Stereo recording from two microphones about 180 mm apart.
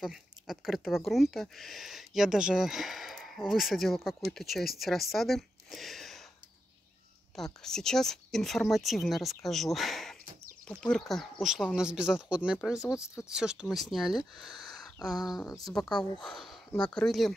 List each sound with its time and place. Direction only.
0.0 s speech: centre (ahead or behind)
7.3 s speech: centre (ahead or behind)
14.3 s a sound: centre (ahead or behind)
15.1 s speech: 20° left (ahead or behind)
15.9 s speech: 5° left (ahead or behind)